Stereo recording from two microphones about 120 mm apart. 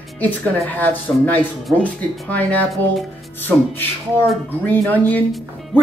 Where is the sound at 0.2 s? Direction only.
15° left (ahead or behind).